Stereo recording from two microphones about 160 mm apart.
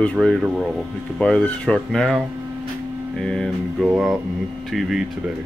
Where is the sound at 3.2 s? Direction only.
5° left (ahead or behind).